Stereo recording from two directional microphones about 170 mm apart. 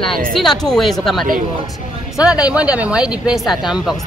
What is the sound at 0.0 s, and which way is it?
Speech, 5° left (ahead or behind).